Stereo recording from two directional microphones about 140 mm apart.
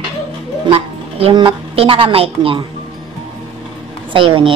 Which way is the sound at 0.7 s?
45° right (ahead or behind).